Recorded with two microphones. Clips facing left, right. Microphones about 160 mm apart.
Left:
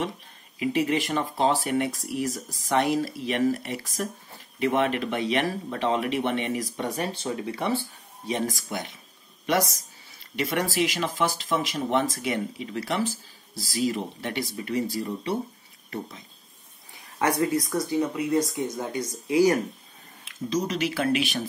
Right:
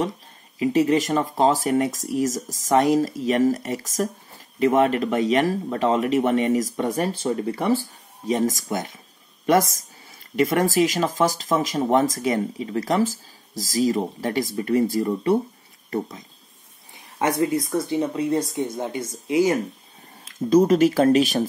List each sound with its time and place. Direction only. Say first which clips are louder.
0.6 s speech: right 6 dB; 40° right (ahead or behind)
17.2 s speech: right 2 dB; 25° right (ahead or behind)
20.2 s speech: right 11 dB; 50° right (ahead or behind)